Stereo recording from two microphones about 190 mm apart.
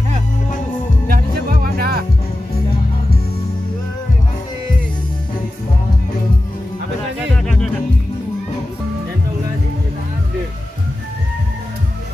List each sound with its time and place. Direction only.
1.0 s music: 50° right (ahead or behind)
7.4 s music: 5° left (ahead or behind)